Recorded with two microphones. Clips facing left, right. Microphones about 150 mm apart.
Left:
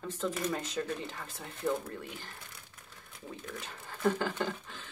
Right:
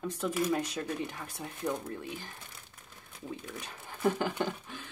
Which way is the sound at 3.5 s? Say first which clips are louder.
Even; 15° right (ahead or behind).